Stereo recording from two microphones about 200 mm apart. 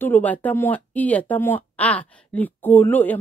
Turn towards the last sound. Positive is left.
turn(degrees=10)  # may be behind; listen again after turning